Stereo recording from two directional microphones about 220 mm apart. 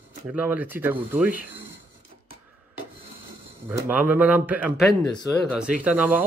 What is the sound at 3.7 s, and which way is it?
Speech, 10° right (ahead or behind).